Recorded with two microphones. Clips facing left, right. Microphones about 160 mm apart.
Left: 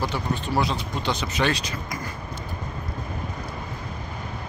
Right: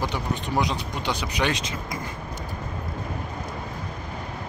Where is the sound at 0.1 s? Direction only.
15° right (ahead or behind).